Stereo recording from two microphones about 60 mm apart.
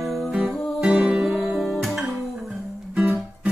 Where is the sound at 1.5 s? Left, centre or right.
Centre.